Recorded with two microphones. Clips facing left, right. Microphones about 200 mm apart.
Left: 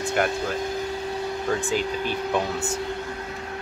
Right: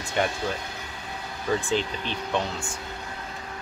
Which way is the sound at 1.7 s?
5° left (ahead or behind).